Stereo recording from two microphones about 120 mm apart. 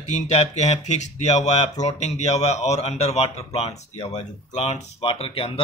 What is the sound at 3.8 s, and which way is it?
Speech, 70° left (ahead or behind).